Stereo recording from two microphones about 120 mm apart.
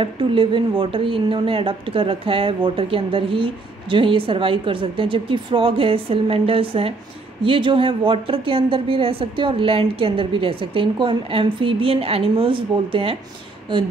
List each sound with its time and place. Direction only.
0.0 s speech: 45° right (ahead or behind)